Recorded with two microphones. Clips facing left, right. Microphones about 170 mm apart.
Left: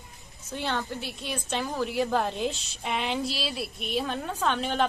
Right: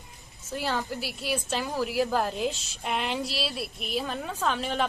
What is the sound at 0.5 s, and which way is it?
A woman's voice, centre (ahead or behind).